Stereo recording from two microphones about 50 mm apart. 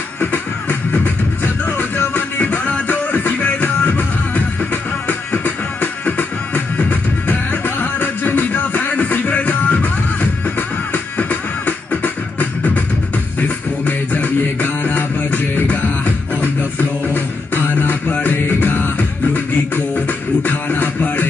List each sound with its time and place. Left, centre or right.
0.2 s music: left
19.3 s beatboxing: left